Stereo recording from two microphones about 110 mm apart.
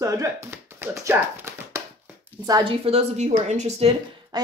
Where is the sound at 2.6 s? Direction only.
65° right (ahead or behind).